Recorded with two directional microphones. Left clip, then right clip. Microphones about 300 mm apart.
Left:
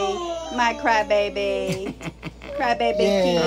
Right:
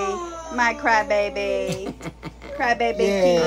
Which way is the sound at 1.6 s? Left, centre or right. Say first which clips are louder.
Even; centre.